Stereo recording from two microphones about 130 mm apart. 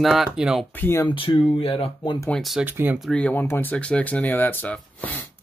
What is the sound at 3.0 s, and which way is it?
Speech, 5° left (ahead or behind).